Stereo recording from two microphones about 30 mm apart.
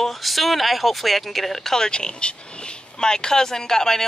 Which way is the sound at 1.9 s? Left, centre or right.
Left.